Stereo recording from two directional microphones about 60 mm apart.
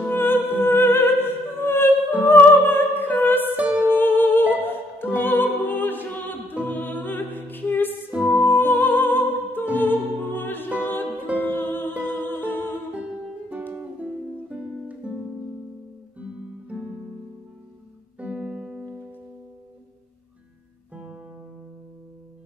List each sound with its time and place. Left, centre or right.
0.1 s music: left
8.1 s music: centre
8.5 s music: left
11.1 s music: right
11.3 s music: left
12.0 s humming: left
13.5 s music: right
16.2 s guitar: right
18.2 s music: centre
20.9 s music: centre